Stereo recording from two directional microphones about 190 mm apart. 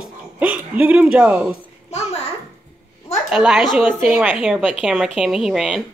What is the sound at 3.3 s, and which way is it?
Speech, 5° right (ahead or behind).